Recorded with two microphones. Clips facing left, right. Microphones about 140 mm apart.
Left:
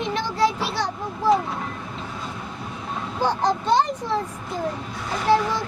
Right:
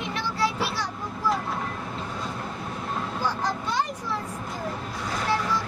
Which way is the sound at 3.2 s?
25° left (ahead or behind).